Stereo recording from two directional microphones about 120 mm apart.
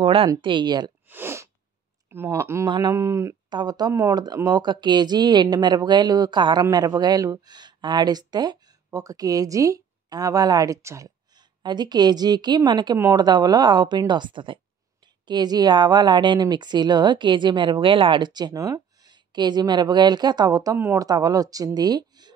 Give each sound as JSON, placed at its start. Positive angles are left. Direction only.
{"t": 0.0, "sound": "speech", "side_deg": -50}
{"t": 1.0, "sound": "sneeze", "side_deg": -20}
{"t": 2.0, "sound": "speech", "side_deg": -20}
{"t": 3.4, "sound": "speech", "side_deg": -35}